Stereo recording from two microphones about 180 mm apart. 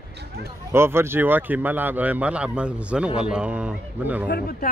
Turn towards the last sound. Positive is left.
turn(degrees=60)  # may be behind; listen again after turning